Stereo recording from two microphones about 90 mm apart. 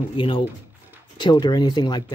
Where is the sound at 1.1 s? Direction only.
55° left (ahead or behind).